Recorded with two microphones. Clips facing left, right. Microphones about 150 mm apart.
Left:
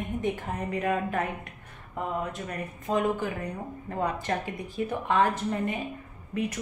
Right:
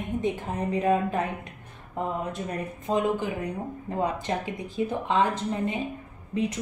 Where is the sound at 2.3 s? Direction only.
25° right (ahead or behind).